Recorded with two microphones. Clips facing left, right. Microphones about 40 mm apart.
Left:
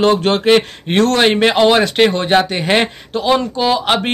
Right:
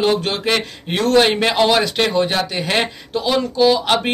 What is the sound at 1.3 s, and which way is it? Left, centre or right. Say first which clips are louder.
Speech: left 4 dB; left.